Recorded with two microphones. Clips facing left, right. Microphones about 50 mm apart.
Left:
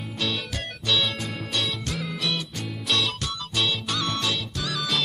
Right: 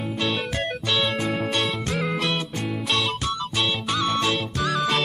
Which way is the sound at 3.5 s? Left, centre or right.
Centre.